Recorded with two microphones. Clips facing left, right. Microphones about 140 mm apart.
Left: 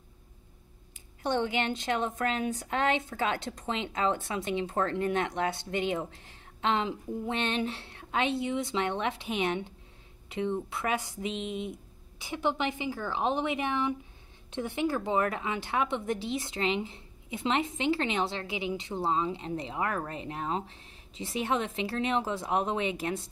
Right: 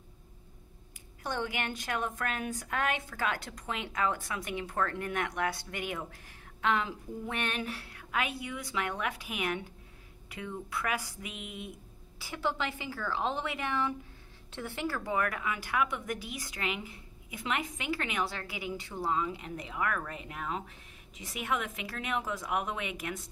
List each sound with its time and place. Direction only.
1.2 s speech: 25° left (ahead or behind)